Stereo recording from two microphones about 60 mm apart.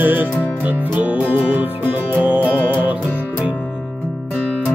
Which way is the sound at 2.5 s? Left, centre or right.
Left.